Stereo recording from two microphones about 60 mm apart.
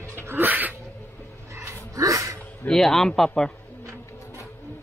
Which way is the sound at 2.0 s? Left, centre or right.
Right.